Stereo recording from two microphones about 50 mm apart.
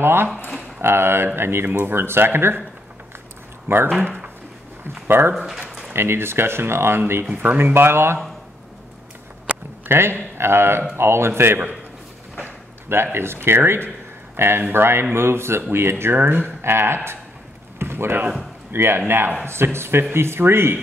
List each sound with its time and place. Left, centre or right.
0.0 s speech: right
3.6 s speech: right
5.3 s speech: centre
5.9 s speech: right
9.5 s a sound: right
9.8 s a man's voice: right
12.8 s speech: right
13.8 s a sound: right
14.7 s speech: right
17.7 s a sound: right
18.7 s speech: right